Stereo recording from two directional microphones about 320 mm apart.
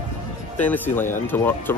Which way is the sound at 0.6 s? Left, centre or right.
Centre.